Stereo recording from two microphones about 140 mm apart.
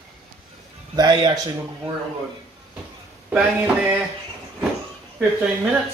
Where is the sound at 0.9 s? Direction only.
30° right (ahead or behind).